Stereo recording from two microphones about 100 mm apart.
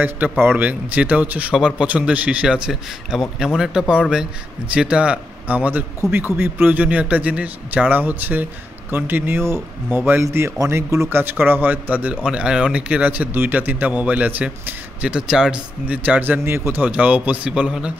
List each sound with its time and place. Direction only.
0.0 s speech: 20° right (ahead or behind)
10.2 s speech: 30° right (ahead or behind); by 17.9 s 10° right (ahead or behind)